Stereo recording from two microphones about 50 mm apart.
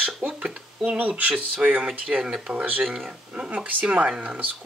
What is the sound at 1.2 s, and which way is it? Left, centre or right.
Speech, right.